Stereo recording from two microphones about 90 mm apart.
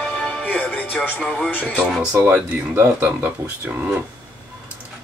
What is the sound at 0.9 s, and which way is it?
Speech, 10° left (ahead or behind).